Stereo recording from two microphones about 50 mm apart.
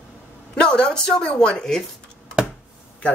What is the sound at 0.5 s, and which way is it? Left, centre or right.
A woman's voice, centre.